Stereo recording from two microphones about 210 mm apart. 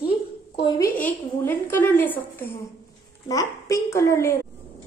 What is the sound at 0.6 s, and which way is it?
Speech, 20° left (ahead or behind).